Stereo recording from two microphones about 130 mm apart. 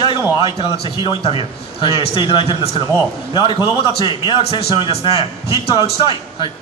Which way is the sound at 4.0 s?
40° left (ahead or behind).